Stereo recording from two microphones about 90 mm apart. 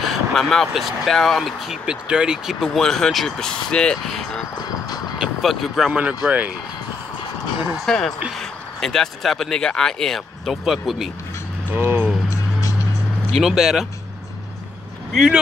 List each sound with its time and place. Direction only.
0.1 s speech: centre (ahead or behind)
4.6 s music: 50° left (ahead or behind)
5.2 s speech: centre (ahead or behind)
5.9 s speech: 15° right (ahead or behind)
7.8 s speech: 5° left (ahead or behind)
11.7 s vehicle: 20° right (ahead or behind)
13.4 s speech: 5° right (ahead or behind)
15.1 s speech: 5° right (ahead or behind)